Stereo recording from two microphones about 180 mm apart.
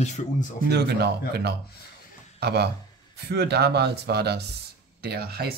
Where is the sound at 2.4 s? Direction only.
65° right (ahead or behind).